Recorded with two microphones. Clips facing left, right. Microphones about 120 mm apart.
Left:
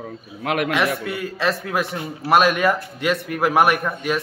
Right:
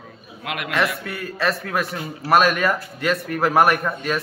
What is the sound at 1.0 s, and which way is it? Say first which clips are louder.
A man's voice: left 1 dB; 15° left (ahead or behind).